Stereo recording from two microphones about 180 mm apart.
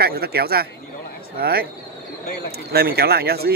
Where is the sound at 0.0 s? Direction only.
60° right (ahead or behind).